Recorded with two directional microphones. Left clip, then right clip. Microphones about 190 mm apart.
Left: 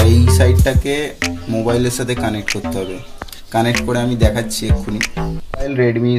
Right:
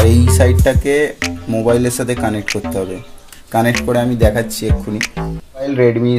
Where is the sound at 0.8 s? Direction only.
35° right (ahead or behind).